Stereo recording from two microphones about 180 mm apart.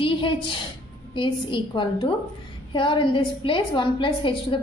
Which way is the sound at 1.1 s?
25° left (ahead or behind).